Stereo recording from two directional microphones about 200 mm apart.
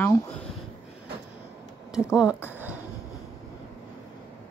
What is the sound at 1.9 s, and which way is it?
Speech, 5° right (ahead or behind).